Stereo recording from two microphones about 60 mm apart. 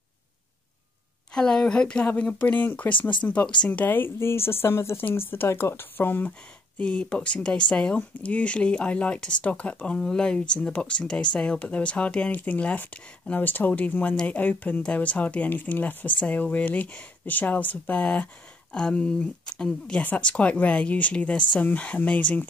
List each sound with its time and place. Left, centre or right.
1.3 s a woman's voice: centre
3.8 s speech: left
6.8 s a woman's voice: centre